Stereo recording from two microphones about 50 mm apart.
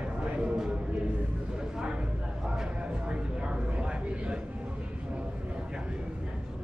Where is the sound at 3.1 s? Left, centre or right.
Right.